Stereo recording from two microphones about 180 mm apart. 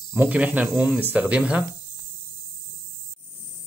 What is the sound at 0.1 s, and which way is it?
Speech, 10° right (ahead or behind).